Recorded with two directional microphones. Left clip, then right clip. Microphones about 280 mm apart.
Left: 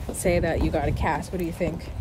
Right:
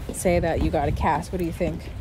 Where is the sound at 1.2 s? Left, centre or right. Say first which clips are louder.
Right 1 dB; right.